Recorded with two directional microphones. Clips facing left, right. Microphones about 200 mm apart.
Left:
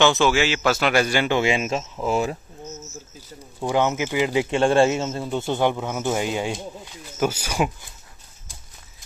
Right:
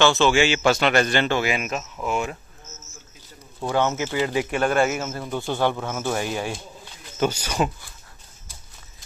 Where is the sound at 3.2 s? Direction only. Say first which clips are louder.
Left 2 dB; 15° left (ahead or behind).